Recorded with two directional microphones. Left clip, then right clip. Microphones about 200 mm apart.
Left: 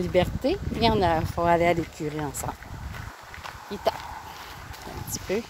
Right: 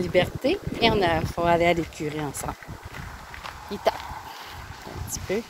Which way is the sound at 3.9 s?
5° right (ahead or behind).